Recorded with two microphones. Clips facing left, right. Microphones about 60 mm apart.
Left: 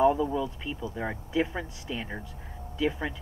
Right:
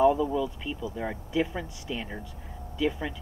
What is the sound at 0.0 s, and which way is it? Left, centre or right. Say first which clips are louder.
Speech: right 1 dB; centre.